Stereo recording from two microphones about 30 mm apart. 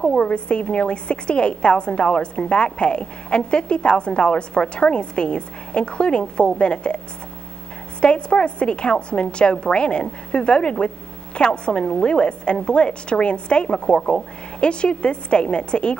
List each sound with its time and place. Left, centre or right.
0.2 s a woman's voice: left
8.0 s a woman's voice: left